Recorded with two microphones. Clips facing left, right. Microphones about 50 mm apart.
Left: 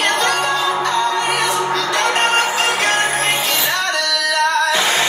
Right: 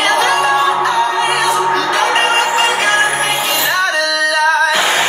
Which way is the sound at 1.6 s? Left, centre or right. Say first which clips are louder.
Right 4 dB; right.